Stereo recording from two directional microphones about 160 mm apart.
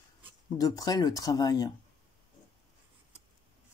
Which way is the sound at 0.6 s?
25° left (ahead or behind).